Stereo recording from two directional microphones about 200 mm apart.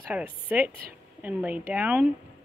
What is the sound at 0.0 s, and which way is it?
A woman's voice, 10° right (ahead or behind).